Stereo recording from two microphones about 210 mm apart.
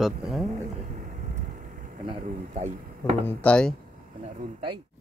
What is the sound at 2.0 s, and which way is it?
A man's voice, 30° right (ahead or behind).